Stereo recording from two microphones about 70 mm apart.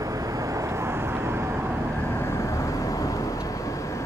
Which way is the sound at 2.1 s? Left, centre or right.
Left.